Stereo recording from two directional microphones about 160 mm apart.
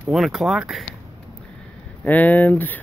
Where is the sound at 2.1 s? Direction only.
10° left (ahead or behind).